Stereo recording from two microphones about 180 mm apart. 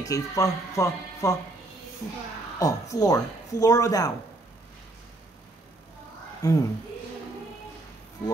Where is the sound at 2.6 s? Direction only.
20° left (ahead or behind).